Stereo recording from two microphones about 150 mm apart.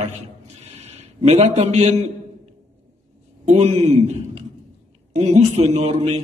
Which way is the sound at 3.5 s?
45° right (ahead or behind).